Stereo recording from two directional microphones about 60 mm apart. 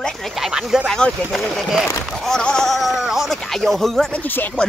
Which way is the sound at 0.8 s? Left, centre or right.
Centre.